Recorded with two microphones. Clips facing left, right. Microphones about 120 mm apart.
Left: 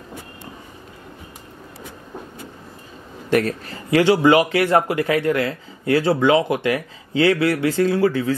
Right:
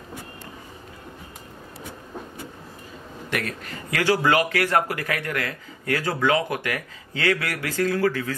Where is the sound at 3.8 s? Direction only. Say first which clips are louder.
Left 7 dB; 25° left (ahead or behind).